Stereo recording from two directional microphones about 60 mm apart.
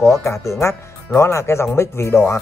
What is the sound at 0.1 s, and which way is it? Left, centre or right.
Speech, left.